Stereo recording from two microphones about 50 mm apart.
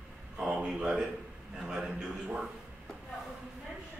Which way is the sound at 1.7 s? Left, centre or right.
Centre.